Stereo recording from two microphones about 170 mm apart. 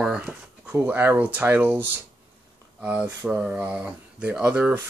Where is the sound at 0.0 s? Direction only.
5° right (ahead or behind).